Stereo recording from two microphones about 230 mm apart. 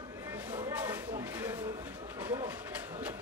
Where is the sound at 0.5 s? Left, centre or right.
Centre.